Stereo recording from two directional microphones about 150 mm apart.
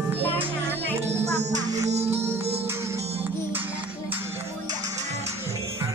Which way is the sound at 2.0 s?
15° right (ahead or behind).